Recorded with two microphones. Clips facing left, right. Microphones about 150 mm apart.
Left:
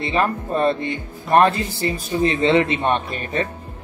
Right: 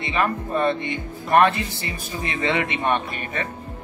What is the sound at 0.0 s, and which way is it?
Speech, 30° left (ahead or behind).